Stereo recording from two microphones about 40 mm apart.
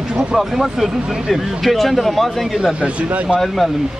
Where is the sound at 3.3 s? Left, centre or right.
Right.